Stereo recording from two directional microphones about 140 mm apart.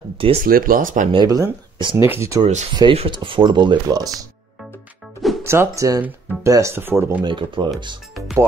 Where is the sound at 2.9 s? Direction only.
40° right (ahead or behind).